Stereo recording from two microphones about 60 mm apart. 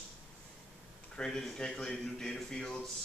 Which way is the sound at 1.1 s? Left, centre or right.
Centre.